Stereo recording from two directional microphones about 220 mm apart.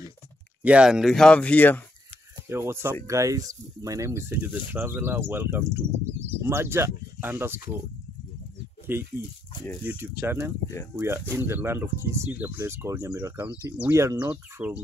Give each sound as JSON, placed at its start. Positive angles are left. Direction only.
{"t": 0.6, "sound": "speech", "side_deg": -5}
{"t": 2.5, "sound": "speech", "side_deg": -10}
{"t": 8.9, "sound": "speech", "side_deg": -10}
{"t": 9.5, "sound": "speech", "side_deg": 20}
{"t": 9.8, "sound": "speech", "side_deg": -10}